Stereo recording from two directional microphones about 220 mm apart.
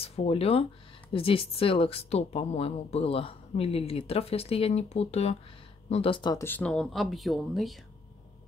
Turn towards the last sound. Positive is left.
turn(degrees=0)  # may be behind; listen again after turning